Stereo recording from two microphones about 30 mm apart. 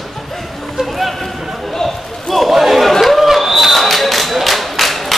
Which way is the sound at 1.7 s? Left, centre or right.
Centre.